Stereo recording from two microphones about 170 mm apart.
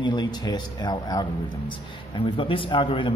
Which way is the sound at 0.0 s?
25° left (ahead or behind).